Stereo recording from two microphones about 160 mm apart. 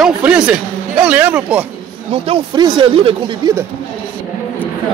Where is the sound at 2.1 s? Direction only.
35° right (ahead or behind).